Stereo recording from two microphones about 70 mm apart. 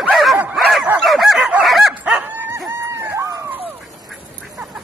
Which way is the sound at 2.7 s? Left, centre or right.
Right.